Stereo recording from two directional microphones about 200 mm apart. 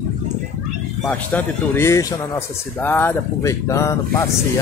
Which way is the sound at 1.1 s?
5° left (ahead or behind).